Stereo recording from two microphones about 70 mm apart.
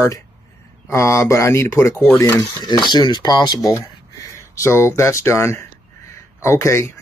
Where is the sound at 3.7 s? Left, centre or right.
Left.